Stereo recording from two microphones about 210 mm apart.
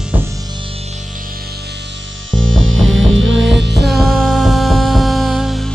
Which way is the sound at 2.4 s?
65° right (ahead or behind).